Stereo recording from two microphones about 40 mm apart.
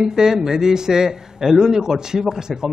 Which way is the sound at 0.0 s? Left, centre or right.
Centre.